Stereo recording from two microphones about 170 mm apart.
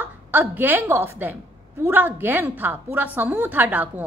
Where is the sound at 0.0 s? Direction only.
10° right (ahead or behind).